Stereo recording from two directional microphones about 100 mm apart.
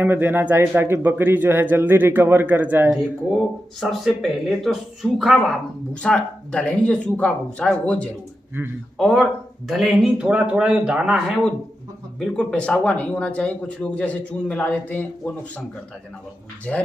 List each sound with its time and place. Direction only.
0.0 s a man's voice: 20° right (ahead or behind)
3.8 s speech: centre (ahead or behind)
6.0 s speech: 10° left (ahead or behind)
8.6 s a man's voice: 20° right (ahead or behind)
8.9 s speech: 5° left (ahead or behind)
12.2 s speech: 10° left (ahead or behind)
16.7 s speech: 10° left (ahead or behind)